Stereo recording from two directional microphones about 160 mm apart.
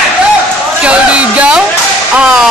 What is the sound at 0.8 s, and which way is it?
Speech, 10° right (ahead or behind).